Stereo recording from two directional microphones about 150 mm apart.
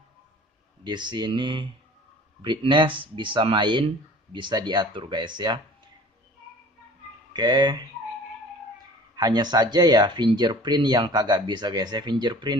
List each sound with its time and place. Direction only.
0.8 s speech: 30° right (ahead or behind)
7.3 s speech: 30° right (ahead or behind)
9.1 s speech: 25° right (ahead or behind)